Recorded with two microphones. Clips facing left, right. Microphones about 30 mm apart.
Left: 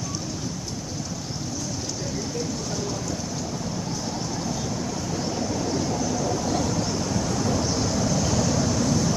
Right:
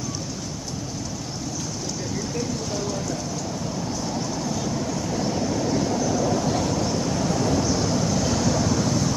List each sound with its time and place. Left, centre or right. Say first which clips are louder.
6.0 s vehicle: right 3 dB; centre